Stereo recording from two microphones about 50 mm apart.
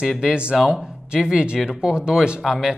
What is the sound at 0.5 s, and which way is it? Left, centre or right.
A woman's voice, centre.